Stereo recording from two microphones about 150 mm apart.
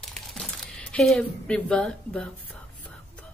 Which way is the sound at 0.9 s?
5° left (ahead or behind).